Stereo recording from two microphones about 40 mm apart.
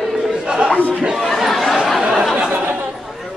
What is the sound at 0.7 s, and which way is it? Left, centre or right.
Speech, left.